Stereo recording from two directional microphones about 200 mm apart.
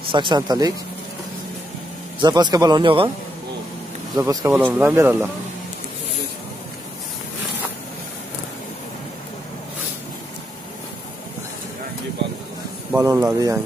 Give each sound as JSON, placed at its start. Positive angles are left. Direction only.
{"t": 0.1, "sound": "a man's voice", "side_deg": -25}
{"t": 2.2, "sound": "a man's voice", "side_deg": -20}
{"t": 4.2, "sound": "speech", "side_deg": -15}
{"t": 12.9, "sound": "speech", "side_deg": -15}